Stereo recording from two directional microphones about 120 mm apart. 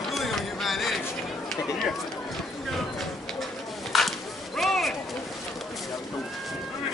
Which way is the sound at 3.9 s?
Centre (ahead or behind).